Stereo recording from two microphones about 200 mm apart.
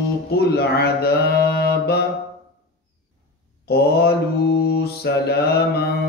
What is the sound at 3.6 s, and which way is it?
A man's voice, 55° left (ahead or behind).